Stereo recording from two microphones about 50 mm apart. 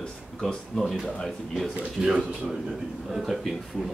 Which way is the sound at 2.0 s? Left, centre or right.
Centre.